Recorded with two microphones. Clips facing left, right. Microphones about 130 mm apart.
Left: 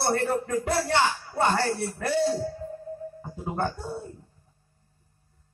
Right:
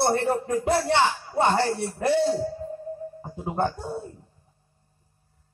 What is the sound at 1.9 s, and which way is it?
Speech, 20° right (ahead or behind).